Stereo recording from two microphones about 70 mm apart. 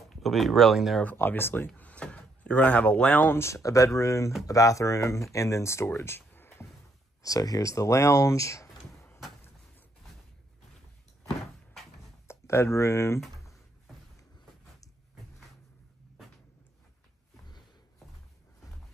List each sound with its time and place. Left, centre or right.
0.1 s speech: centre
1.0 s speech: left
1.8 s a sound: centre
3.3 s speech: left
7.2 s speech: left
12.3 s speech: left